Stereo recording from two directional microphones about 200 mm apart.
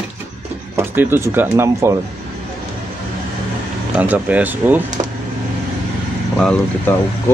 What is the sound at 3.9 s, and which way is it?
Speech, 10° right (ahead or behind).